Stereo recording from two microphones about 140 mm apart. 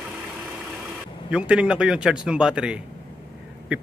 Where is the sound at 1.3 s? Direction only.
10° right (ahead or behind).